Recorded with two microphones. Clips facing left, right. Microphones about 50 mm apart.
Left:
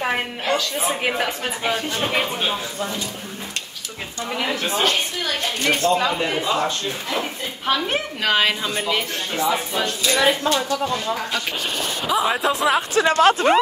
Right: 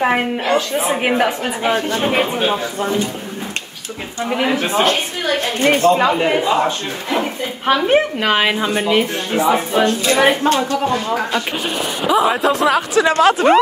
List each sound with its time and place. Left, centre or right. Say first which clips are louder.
0.0 s speech: right 7 dB; centre
4.3 s speech: right 6 dB; right
9.8 s speech: right 3 dB; right
11.3 s speech: right 5 dB; centre
12.9 s speech: right 2 dB; right